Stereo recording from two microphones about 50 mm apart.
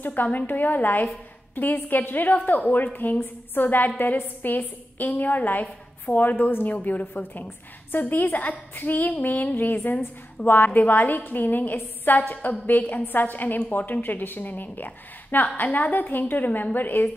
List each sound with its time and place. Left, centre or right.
0.0 s a woman's voice: left